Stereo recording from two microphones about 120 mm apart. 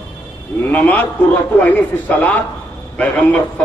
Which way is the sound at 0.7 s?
15° left (ahead or behind).